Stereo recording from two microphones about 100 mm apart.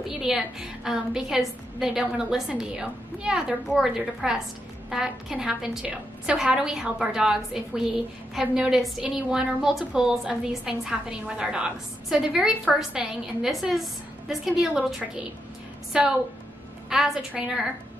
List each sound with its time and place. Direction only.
0.3 s a woman's voice: 5° right (ahead or behind)